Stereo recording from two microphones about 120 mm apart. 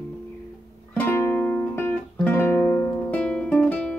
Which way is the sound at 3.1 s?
10° left (ahead or behind).